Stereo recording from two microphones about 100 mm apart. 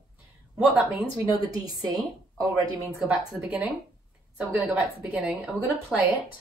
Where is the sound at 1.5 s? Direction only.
40° right (ahead or behind).